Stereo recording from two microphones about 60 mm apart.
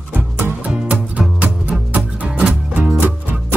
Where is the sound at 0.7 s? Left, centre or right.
Right.